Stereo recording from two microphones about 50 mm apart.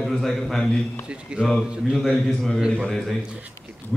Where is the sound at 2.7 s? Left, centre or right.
Centre.